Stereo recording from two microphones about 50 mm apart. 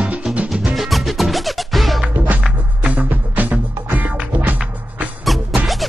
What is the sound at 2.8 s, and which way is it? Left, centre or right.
Music, right.